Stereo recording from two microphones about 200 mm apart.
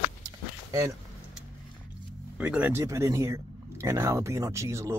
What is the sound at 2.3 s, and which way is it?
Speech, 5° right (ahead or behind).